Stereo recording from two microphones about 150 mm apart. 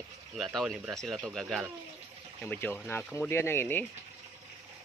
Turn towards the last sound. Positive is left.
turn(degrees=15)  # may be behind; listen again after turning